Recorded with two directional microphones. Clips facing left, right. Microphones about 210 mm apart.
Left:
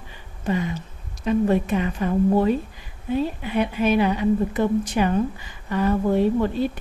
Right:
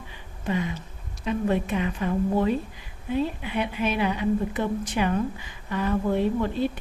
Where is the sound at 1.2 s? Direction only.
40° left (ahead or behind).